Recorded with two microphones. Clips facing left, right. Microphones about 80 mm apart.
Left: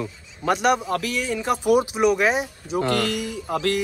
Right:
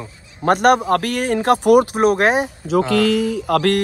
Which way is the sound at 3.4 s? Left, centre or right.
Right.